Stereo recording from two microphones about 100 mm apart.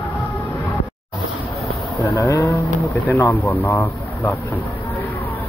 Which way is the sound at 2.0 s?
30° left (ahead or behind).